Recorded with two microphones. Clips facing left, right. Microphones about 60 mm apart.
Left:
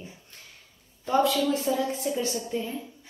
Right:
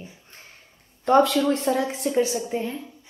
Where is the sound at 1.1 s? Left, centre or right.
Right.